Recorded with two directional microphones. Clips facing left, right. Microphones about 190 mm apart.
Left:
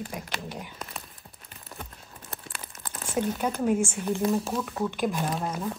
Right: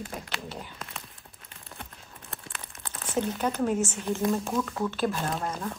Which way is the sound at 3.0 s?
10° left (ahead or behind).